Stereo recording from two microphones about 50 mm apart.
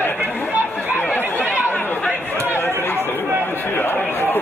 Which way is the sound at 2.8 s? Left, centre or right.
Left.